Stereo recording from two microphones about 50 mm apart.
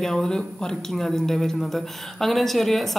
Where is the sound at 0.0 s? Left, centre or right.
Centre.